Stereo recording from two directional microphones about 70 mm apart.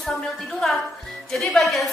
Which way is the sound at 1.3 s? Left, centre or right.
Centre.